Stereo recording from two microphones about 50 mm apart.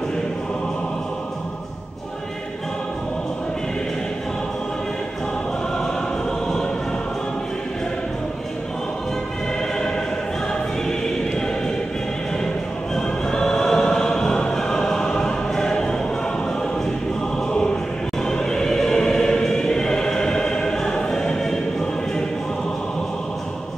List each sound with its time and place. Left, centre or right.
10.9 s opera: centre
12.9 s music: centre
17.5 s choir: centre
18.2 s music: centre